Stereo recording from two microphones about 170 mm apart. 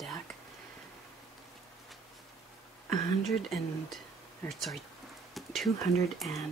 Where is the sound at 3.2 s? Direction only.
Centre (ahead or behind).